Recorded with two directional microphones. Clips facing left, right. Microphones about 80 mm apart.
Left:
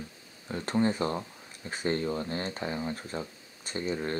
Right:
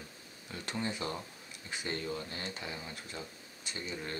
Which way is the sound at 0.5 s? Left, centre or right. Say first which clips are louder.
Left 10 dB; left.